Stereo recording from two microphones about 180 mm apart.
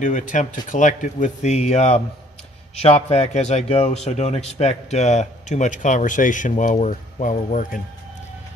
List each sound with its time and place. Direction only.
0.0 s a man's voice: 45° left (ahead or behind)